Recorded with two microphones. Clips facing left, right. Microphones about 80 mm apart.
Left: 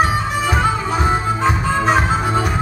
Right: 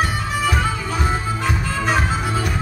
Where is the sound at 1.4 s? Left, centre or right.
Left.